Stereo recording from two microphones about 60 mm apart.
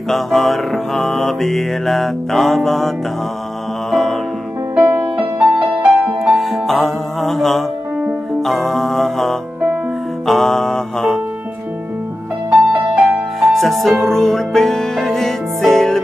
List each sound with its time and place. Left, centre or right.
0.1 s music: centre
3.9 s music: centre
4.7 s music: right
5.4 s music: centre
6.2 s music: centre
12.4 s music: centre
13.4 s music: centre